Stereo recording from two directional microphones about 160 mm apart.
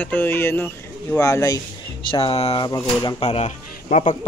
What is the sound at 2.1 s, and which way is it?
Speech, 40° left (ahead or behind).